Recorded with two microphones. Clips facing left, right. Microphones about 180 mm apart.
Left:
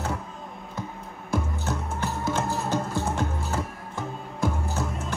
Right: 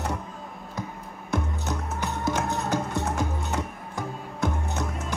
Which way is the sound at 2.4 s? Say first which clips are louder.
Even; centre (ahead or behind).